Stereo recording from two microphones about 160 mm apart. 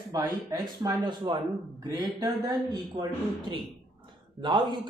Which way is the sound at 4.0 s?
30° right (ahead or behind).